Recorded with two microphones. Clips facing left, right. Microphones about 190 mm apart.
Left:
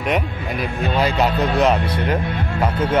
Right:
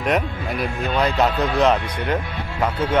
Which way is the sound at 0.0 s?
Centre (ahead or behind).